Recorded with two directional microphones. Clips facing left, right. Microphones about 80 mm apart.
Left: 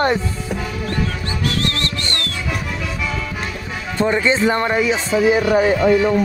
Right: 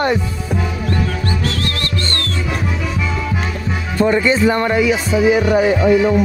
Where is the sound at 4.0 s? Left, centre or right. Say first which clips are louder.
Right 3 dB; left.